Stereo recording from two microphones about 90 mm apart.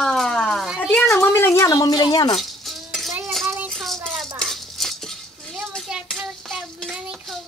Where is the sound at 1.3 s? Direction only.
30° left (ahead or behind).